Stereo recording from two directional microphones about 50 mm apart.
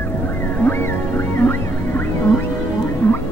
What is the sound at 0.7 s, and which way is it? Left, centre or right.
Music, left.